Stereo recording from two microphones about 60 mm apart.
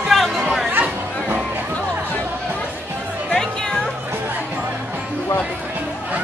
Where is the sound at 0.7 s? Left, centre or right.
Right.